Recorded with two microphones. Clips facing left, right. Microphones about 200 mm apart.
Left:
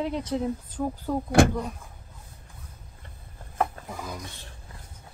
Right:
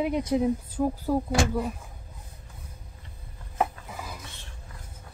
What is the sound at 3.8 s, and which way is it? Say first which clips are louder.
Chopping: left 4 dB; 40° left (ahead or behind).